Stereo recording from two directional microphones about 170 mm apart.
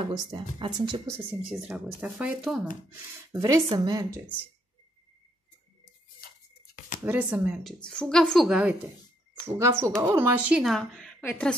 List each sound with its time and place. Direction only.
0.0 s speech: 25° right (ahead or behind)
1.5 s a woman's voice: 5° right (ahead or behind)
3.3 s speech: 20° right (ahead or behind)
6.2 s a sound: 60° left (ahead or behind)
7.1 s a woman's voice: 10° right (ahead or behind)
9.6 s a woman's voice: 15° right (ahead or behind); by 11.5 s 10° left (ahead or behind)